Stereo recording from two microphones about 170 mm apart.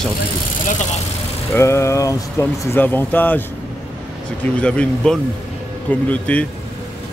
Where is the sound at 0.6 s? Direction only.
45° left (ahead or behind).